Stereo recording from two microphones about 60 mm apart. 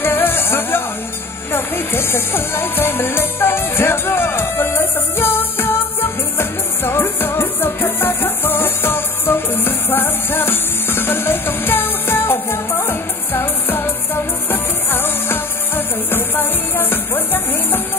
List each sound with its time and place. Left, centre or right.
0.0 s music: left